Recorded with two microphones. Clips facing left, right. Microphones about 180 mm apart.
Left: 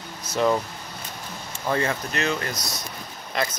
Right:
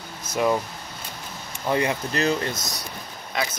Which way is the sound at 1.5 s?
15° right (ahead or behind).